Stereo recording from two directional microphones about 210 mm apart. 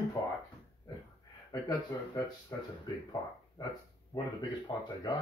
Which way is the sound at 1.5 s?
15° left (ahead or behind).